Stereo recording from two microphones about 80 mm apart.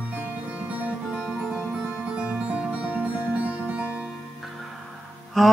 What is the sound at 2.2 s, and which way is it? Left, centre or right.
Music, centre.